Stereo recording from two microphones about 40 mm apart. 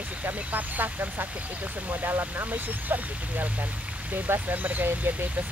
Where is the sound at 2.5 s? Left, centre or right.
Right.